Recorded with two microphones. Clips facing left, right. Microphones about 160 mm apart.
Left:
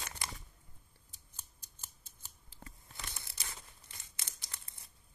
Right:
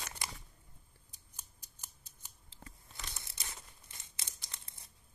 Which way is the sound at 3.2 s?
25° right (ahead or behind).